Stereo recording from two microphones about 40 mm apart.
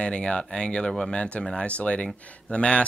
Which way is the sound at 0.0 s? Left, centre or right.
Left.